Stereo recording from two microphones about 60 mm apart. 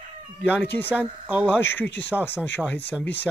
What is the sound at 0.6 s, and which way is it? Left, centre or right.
A man's voice, left.